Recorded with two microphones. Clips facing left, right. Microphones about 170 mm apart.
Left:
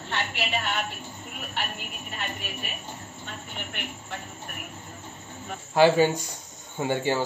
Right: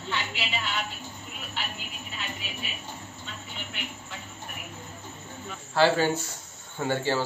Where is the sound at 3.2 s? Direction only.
55° left (ahead or behind).